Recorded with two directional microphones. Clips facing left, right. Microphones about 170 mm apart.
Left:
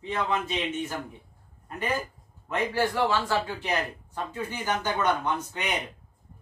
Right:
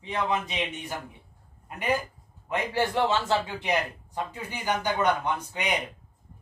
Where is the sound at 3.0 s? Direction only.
20° right (ahead or behind).